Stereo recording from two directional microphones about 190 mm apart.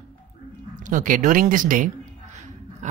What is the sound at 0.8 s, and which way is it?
Speech, 45° right (ahead or behind).